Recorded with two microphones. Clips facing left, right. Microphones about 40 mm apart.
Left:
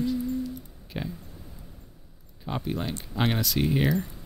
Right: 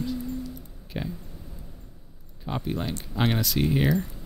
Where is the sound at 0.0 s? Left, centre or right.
Centre.